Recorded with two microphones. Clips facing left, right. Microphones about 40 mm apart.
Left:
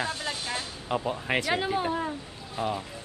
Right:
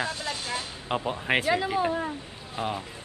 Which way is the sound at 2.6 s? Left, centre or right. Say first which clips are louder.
Left 1 dB; right.